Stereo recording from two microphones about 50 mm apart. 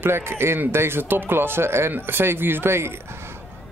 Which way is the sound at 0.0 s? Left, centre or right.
Right.